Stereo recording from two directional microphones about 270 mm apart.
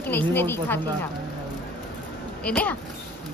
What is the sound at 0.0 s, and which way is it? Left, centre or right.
Speech, centre.